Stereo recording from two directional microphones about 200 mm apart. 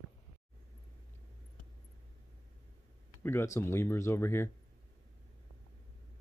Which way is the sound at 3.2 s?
10° left (ahead or behind).